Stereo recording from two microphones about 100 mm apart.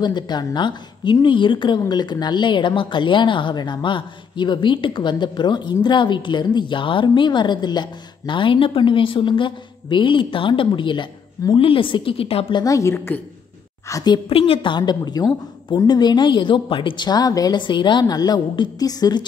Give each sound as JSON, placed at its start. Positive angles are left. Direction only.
{"t": 0.0, "sound": "a woman's voice", "side_deg": 45}
{"t": 12.6, "sound": "a woman's voice", "side_deg": 30}
{"t": 14.3, "sound": "a woman's voice", "side_deg": 65}